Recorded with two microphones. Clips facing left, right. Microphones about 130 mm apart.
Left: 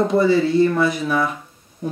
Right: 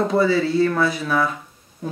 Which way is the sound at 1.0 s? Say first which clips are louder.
Left 1 dB; 10° left (ahead or behind).